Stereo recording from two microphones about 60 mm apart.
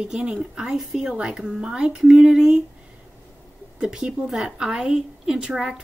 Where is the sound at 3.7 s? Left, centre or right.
Centre.